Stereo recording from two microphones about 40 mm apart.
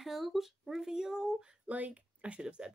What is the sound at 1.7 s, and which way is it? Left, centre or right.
Speech, right.